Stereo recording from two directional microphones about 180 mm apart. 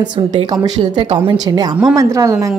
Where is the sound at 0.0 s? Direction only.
25° right (ahead or behind).